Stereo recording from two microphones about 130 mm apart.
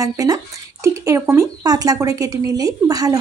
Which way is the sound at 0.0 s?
25° right (ahead or behind).